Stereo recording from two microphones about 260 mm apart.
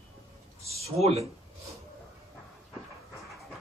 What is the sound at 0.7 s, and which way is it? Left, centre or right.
Speech, right.